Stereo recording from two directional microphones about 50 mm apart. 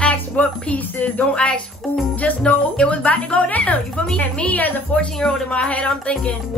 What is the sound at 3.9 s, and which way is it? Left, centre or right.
Speech, centre.